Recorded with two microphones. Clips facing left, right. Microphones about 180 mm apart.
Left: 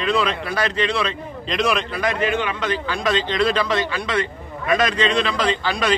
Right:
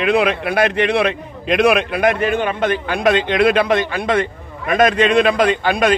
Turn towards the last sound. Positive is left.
turn(degrees=-55)  # may be behind; listen again after turning